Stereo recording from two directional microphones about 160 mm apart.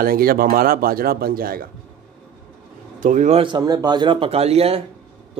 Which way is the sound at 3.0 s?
55° right (ahead or behind).